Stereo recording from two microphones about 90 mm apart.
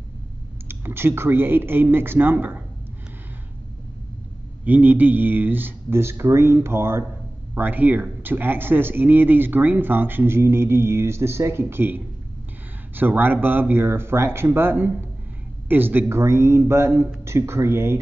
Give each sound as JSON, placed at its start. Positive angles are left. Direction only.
{"t": 0.7, "sound": "speech", "side_deg": -25}
{"t": 4.6, "sound": "speech", "side_deg": -20}